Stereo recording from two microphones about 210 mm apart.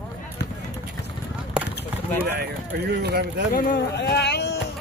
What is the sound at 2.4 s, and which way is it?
Speech, 50° right (ahead or behind).